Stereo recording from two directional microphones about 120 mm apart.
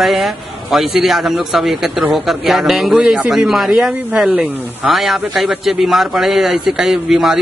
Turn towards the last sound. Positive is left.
turn(degrees=-5)  # may be behind; listen again after turning